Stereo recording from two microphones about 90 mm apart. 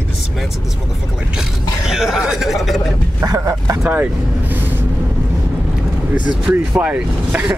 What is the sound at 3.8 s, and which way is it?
Speech, 20° right (ahead or behind).